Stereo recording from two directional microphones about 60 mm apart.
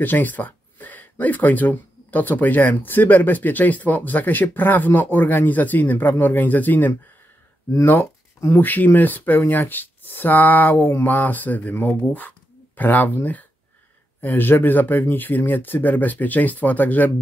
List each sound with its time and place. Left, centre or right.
0.0 s speech: left